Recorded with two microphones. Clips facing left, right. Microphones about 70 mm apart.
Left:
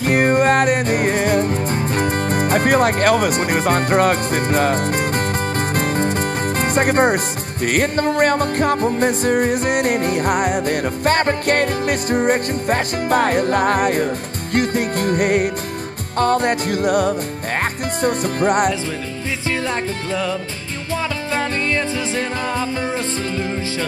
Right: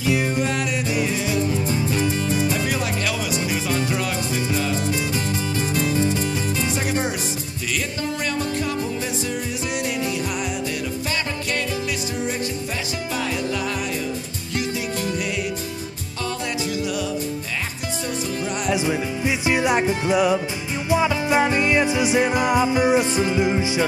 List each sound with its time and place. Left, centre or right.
0.0 s music: left
2.0 s speech: left
6.6 s speech: left
7.6 s music: left
18.9 s music: centre